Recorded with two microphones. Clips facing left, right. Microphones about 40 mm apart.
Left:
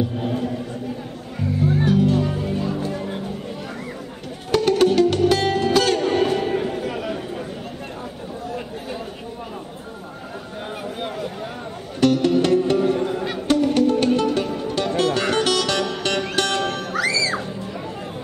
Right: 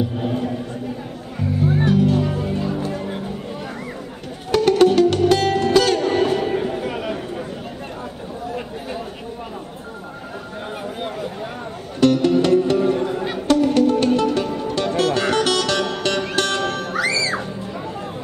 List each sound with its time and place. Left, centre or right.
0.2 s music: centre
1.9 s music: centre
4.5 s music: centre
6.8 s a sound: centre
12.0 s music: centre